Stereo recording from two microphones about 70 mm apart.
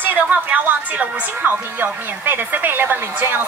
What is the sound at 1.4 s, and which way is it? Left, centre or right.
Speech, right.